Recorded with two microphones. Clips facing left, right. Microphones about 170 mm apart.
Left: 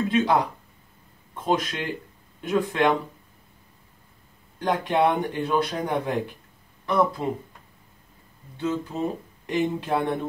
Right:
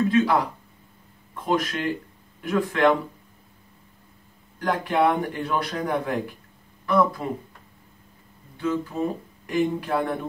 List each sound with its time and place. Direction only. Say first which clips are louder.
0.1 s a man's voice: right 1 dB; 20° left (ahead or behind)
4.6 s a man's voice: even; 20° left (ahead or behind)
8.5 s a man's voice: right 1 dB; 25° left (ahead or behind)